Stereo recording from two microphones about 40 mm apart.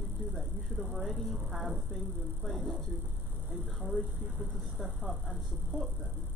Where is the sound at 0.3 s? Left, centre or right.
Centre.